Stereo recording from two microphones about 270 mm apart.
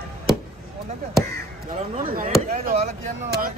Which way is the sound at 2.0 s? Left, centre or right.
Right.